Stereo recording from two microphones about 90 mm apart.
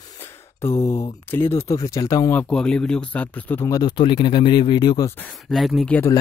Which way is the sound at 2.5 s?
10° left (ahead or behind).